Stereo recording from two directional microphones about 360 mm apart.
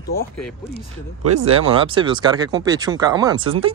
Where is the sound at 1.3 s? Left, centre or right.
Centre.